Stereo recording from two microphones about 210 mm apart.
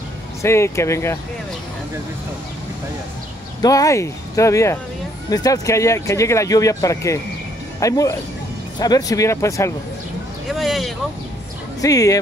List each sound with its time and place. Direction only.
0.4 s speech: 15° left (ahead or behind)
3.6 s speech: 15° left (ahead or behind)
10.5 s vehicle: centre (ahead or behind)
11.8 s speech: 15° left (ahead or behind)